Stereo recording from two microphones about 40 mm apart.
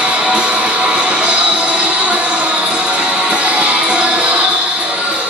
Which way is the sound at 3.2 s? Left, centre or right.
Right.